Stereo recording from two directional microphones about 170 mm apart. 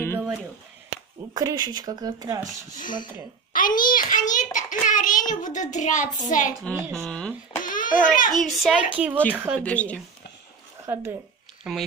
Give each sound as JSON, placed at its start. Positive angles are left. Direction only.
{"t": 1.3, "sound": "speech", "side_deg": -20}
{"t": 2.7, "sound": "speech", "side_deg": 50}
{"t": 3.5, "sound": "a sound", "side_deg": 55}
{"t": 5.3, "sound": "a child's voice", "side_deg": 45}
{"t": 6.6, "sound": "speech", "side_deg": 5}
{"t": 7.6, "sound": "a sound", "side_deg": 50}
{"t": 8.3, "sound": "speech", "side_deg": 0}
{"t": 9.6, "sound": "speech", "side_deg": 10}
{"t": 10.9, "sound": "speech", "side_deg": -15}
{"t": 11.7, "sound": "speech", "side_deg": -5}